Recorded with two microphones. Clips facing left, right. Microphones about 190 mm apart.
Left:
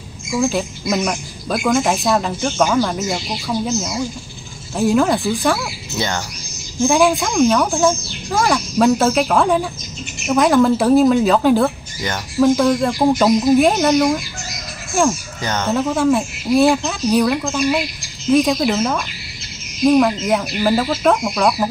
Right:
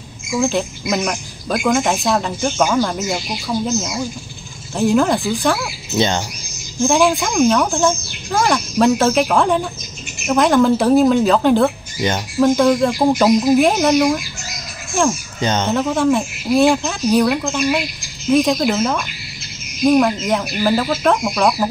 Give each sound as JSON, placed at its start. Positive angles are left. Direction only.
{"t": 0.4, "sound": "speech", "side_deg": 5}
{"t": 5.9, "sound": "speech", "side_deg": -20}
{"t": 6.8, "sound": "speech", "side_deg": 5}
{"t": 15.4, "sound": "speech", "side_deg": -20}
{"t": 15.7, "sound": "speech", "side_deg": 0}